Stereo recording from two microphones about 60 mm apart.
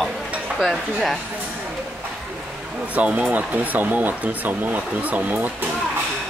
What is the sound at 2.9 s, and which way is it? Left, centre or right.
Speech, right.